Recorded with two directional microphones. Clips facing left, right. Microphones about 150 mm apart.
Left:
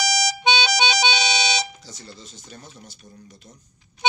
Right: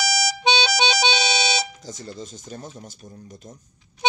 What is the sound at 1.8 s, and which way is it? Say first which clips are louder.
Speech: right 7 dB; 45° right (ahead or behind).